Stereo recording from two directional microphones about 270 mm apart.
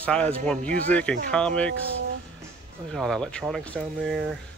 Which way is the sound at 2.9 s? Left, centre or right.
Centre.